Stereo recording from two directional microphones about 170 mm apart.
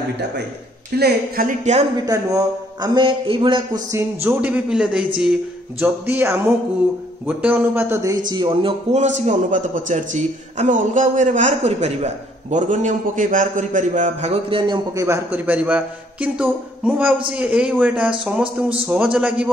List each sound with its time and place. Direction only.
0.9 s a man's voice: 65° right (ahead or behind); by 1.9 s 45° right (ahead or behind)
2.0 s a man's voice: 20° right (ahead or behind)
3.9 s a man's voice: 15° right (ahead or behind)
8.3 s a man's voice: 25° right (ahead or behind)
8.9 s a man's voice: 45° right (ahead or behind)
15.0 s a man's voice: 15° right (ahead or behind)